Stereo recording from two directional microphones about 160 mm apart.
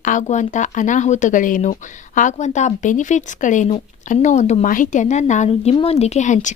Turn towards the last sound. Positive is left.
turn(degrees=50)  # may be behind; listen again after turning